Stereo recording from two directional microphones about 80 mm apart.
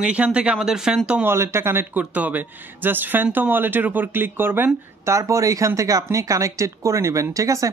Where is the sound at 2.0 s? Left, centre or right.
Centre.